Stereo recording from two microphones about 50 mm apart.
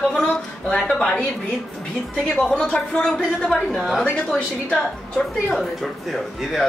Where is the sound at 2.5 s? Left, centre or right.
Centre.